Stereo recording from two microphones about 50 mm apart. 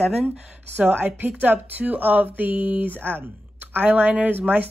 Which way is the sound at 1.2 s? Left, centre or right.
Right.